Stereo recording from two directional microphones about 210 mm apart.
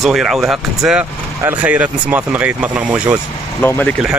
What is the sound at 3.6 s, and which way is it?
Speech, 10° left (ahead or behind).